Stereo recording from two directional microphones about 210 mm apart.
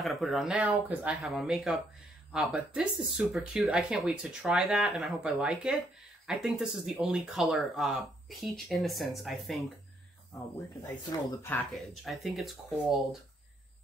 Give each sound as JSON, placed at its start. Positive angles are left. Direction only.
{"t": 0.0, "sound": "speech", "side_deg": 0}
{"t": 10.7, "sound": "speech", "side_deg": 15}
{"t": 11.7, "sound": "speech", "side_deg": 0}